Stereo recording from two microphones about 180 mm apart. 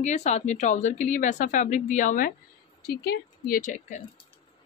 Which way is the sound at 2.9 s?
60° left (ahead or behind).